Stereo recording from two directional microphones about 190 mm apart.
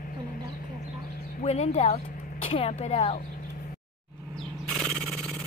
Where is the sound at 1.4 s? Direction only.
35° left (ahead or behind).